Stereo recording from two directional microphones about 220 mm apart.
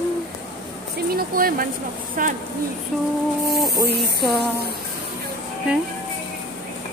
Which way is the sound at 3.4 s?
Centre (ahead or behind).